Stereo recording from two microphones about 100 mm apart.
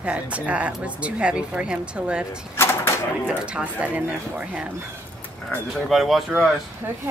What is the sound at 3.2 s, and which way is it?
Speech, 10° right (ahead or behind).